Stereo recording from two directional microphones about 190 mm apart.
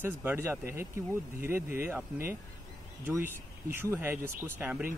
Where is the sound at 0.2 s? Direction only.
15° right (ahead or behind).